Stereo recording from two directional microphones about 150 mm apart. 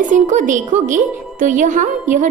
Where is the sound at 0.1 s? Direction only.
55° right (ahead or behind).